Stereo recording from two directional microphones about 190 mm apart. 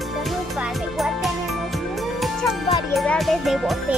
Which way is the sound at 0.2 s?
Centre (ahead or behind).